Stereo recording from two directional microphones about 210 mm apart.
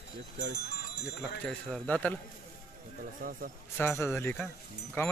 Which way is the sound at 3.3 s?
40° right (ahead or behind).